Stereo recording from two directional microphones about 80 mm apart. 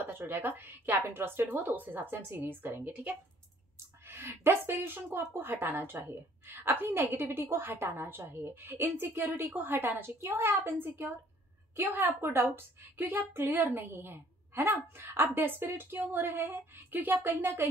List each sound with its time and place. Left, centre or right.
0.2 s speech: right